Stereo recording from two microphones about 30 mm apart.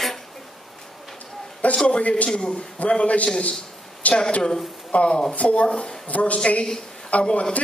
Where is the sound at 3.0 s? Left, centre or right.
Left.